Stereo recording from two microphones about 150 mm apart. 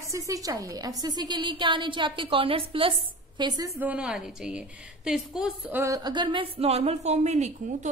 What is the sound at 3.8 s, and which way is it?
A woman's voice, 5° right (ahead or behind).